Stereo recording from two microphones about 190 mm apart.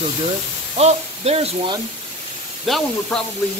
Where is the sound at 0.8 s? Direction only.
35° right (ahead or behind).